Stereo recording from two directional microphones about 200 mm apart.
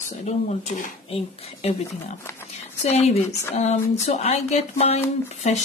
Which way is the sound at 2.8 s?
30° left (ahead or behind).